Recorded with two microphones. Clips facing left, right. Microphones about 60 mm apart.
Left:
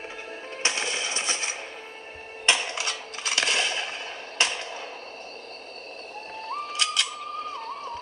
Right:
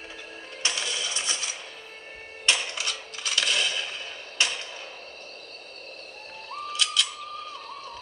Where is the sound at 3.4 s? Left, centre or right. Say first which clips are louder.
Left 1 dB; left.